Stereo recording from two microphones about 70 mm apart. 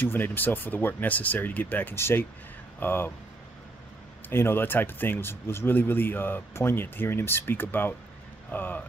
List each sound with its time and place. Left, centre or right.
0.0 s speech: left
4.3 s speech: left